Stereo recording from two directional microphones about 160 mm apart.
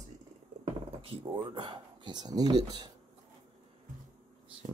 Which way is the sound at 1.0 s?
35° right (ahead or behind).